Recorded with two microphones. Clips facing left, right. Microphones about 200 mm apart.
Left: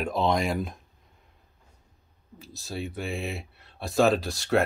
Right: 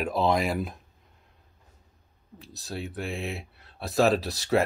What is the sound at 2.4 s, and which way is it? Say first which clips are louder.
Speech: left 1 dB; centre (ahead or behind).